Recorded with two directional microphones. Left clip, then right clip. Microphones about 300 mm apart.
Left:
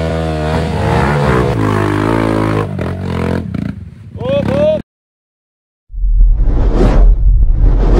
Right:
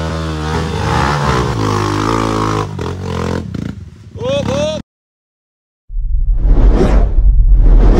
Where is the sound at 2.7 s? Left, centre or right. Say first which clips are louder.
Left 1 dB; centre.